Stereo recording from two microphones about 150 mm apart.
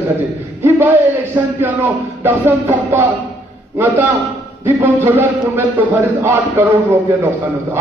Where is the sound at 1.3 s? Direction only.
15° right (ahead or behind).